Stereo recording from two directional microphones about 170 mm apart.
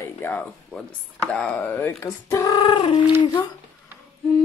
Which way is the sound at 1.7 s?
20° left (ahead or behind).